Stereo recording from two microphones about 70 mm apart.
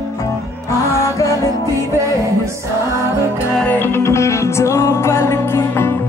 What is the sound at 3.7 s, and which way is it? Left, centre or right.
Music, left.